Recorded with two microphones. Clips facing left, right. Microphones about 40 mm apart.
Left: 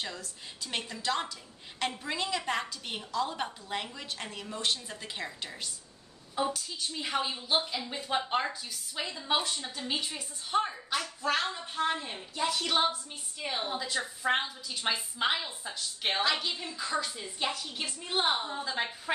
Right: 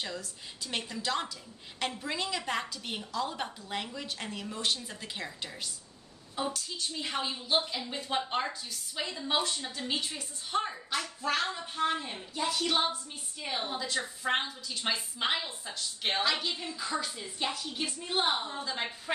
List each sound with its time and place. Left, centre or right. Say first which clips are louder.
0.0 s speech: right 1 dB; centre